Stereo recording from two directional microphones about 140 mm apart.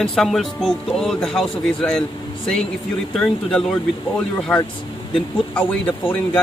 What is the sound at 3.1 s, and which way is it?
A man's voice, centre (ahead or behind).